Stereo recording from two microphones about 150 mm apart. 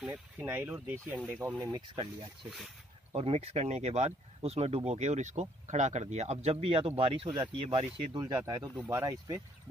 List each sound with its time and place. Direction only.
0.0 s speech: 10° right (ahead or behind)
1.6 s speech: 30° right (ahead or behind)
3.2 s speech: 45° right (ahead or behind)
8.2 s speech: 25° right (ahead or behind)